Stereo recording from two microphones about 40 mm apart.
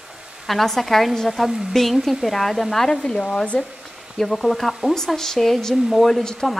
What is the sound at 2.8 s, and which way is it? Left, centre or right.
Speech, centre.